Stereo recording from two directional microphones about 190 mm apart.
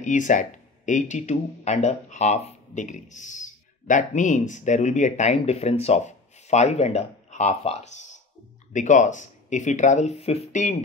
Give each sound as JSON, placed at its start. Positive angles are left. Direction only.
{"t": 0.0, "sound": "speech", "side_deg": 40}